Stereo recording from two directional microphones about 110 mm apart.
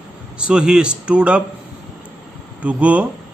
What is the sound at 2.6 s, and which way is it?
Speech, 10° right (ahead or behind).